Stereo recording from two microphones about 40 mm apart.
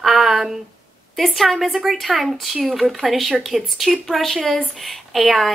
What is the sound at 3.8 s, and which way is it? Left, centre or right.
A child's voice, centre.